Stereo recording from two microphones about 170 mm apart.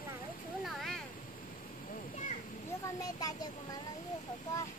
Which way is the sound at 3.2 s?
20° left (ahead or behind).